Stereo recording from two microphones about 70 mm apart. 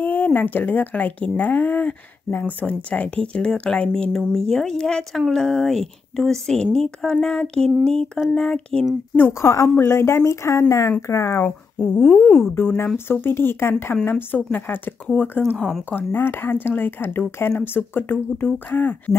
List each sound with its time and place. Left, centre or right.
0.0 s a woman's voice: left
9.3 s speech: left
11.8 s speech: centre
12.5 s speech: left